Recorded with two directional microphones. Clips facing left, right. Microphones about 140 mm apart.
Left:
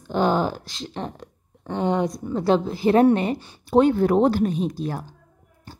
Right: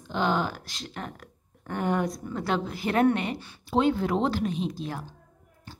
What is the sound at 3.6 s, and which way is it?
A woman's voice, 50° left (ahead or behind).